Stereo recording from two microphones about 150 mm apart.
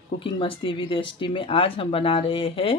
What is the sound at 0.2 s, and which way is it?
Speech, 35° left (ahead or behind).